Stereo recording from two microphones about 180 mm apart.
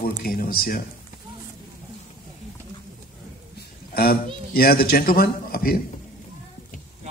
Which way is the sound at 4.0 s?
55° left (ahead or behind).